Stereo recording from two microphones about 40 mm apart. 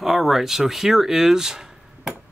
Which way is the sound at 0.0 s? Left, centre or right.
Centre.